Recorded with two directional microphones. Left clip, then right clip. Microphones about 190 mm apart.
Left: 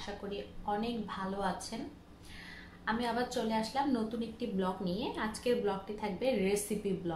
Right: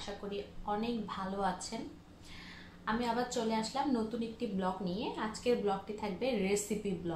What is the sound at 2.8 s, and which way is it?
A woman's voice, 5° left (ahead or behind).